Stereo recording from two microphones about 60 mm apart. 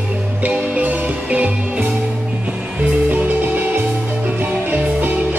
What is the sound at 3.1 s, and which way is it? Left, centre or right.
Music, right.